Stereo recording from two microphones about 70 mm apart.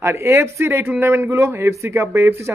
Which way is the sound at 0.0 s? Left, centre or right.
Right.